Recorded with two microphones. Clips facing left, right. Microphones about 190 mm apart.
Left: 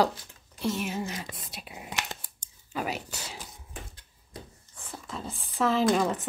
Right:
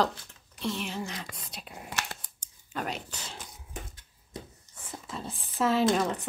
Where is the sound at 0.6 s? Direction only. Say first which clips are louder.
Left 3 dB; 5° left (ahead or behind).